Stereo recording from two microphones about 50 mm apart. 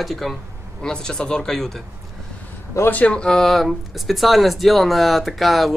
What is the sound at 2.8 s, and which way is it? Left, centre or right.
Speech, left.